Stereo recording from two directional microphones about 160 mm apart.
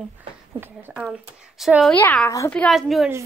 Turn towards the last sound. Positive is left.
turn(degrees=0)  # may be behind; listen again after turning